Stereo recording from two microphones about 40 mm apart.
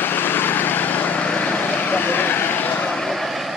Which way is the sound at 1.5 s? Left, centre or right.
Left.